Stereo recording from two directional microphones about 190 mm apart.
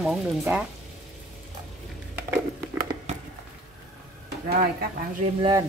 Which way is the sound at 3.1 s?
35° right (ahead or behind).